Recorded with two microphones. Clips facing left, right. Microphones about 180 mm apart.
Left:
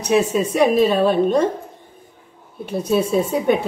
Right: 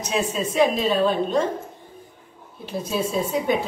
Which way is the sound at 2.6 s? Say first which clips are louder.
Left 6 dB; 60° left (ahead or behind).